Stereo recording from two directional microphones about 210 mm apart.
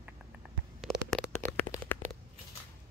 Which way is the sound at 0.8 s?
Centre (ahead or behind).